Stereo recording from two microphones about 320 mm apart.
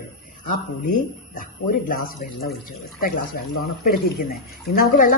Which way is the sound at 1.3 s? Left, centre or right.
Left.